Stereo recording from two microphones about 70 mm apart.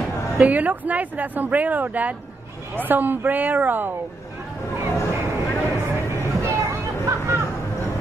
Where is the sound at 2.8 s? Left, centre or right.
Right.